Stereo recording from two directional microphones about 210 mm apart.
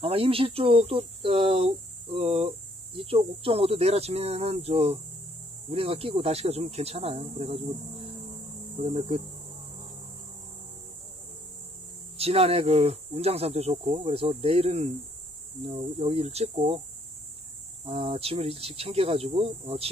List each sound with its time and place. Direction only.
0.0 s speech: 25° right (ahead or behind)
12.2 s speech: 30° right (ahead or behind)
17.8 s speech: 25° right (ahead or behind)